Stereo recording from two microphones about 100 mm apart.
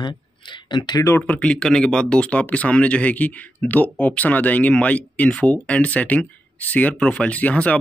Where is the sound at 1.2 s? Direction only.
10° left (ahead or behind).